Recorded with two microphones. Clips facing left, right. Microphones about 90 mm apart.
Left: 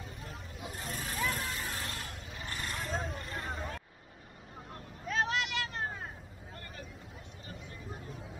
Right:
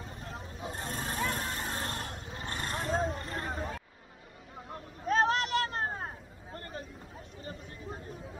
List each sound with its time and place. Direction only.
0.0 s vehicle: 35° right (ahead or behind)
3.4 s vehicle: 5° right (ahead or behind)
5.0 s vehicle: 40° right (ahead or behind)